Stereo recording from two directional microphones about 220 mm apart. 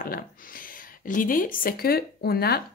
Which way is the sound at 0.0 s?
40° left (ahead or behind).